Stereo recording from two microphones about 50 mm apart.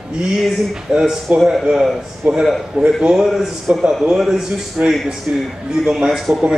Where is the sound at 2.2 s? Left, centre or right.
Right.